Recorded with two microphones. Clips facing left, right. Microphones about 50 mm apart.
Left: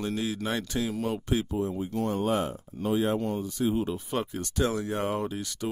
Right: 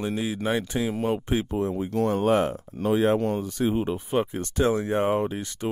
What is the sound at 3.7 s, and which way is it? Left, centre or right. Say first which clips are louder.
Speech: right 4 dB; right.